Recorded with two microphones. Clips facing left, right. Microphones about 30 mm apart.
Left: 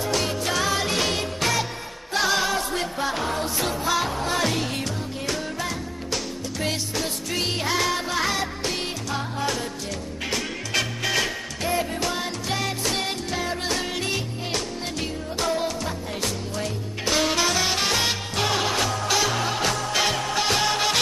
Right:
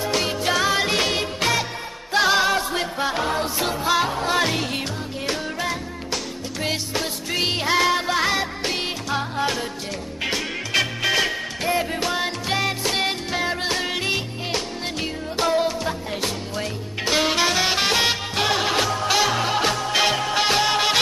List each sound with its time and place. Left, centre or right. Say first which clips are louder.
0.0 s music: right 2 dB; right